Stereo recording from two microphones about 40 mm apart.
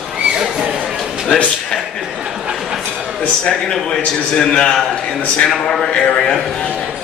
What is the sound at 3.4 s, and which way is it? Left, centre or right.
A man's voice, centre.